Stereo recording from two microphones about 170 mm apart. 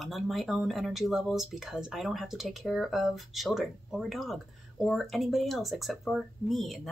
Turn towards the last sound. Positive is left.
turn(degrees=0)  # may be behind; listen again after turning